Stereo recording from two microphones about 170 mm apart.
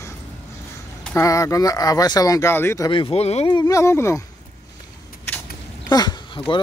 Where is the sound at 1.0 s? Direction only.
15° left (ahead or behind).